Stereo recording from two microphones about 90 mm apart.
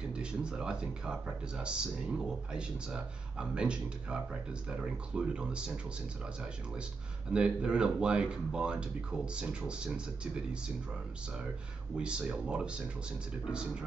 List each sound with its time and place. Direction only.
0.0 s speech: 10° right (ahead or behind)
7.3 s speech: 10° right (ahead or behind)
12.0 s speech: 10° right (ahead or behind)